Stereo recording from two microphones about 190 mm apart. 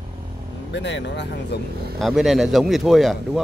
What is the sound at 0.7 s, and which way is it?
Speech, 70° left (ahead or behind).